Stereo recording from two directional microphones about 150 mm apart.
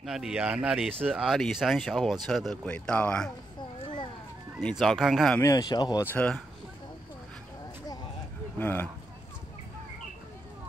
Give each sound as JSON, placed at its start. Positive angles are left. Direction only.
{"t": 0.0, "sound": "speech", "side_deg": -5}
{"t": 4.6, "sound": "speech", "side_deg": 0}
{"t": 5.4, "sound": "speech", "side_deg": 25}
{"t": 6.0, "sound": "speech", "side_deg": 10}
{"t": 8.5, "sound": "speech", "side_deg": 15}